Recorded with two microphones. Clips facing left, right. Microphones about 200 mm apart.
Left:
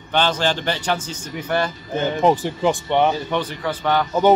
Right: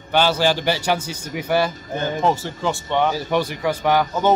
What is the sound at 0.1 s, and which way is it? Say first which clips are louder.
Speech: right 2 dB; 10° right (ahead or behind).